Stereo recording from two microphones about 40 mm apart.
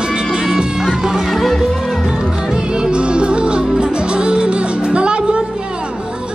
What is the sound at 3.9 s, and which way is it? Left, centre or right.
Music, right.